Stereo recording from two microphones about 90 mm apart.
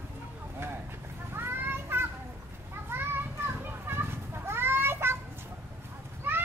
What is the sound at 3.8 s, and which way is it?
Children playing, 25° right (ahead or behind).